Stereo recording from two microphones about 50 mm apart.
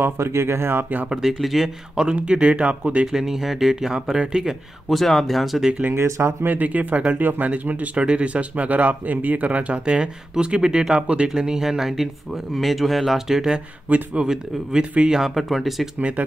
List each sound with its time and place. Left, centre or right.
0.0 s speech: right
1.0 s speech: centre
1.4 s speech: centre
2.1 s speech: right
3.1 s speech: centre
4.8 s speech: centre
6.0 s speech: right
6.4 s speech: right
11.2 s speech: centre
13.8 s speech: right
14.2 s speech: centre
15.3 s speech: centre
16.0 s speech: right